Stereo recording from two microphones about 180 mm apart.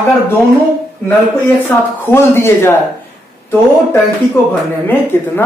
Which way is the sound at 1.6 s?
15° left (ahead or behind).